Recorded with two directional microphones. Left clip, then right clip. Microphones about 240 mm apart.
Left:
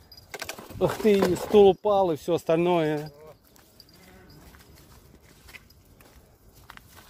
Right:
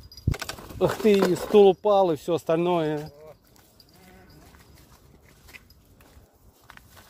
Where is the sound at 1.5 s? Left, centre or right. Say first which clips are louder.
Right 1 dB; centre.